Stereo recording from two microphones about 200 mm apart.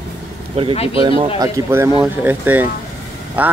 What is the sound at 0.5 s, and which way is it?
Speech, 30° right (ahead or behind).